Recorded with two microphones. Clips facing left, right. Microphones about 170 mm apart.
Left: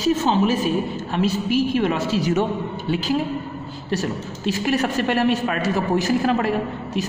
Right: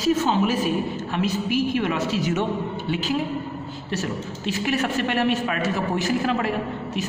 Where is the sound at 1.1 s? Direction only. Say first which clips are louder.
Left 4 dB; 30° left (ahead or behind).